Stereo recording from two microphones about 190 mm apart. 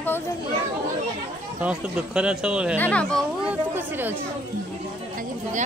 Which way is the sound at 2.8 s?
5° left (ahead or behind).